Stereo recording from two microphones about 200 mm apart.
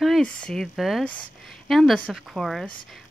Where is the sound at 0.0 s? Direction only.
Centre (ahead or behind).